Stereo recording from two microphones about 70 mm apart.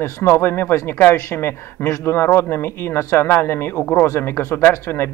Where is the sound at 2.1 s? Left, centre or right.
Left.